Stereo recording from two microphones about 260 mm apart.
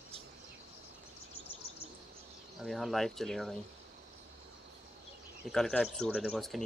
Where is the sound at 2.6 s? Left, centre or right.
Centre.